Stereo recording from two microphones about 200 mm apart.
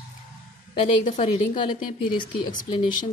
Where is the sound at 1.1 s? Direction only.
25° left (ahead or behind).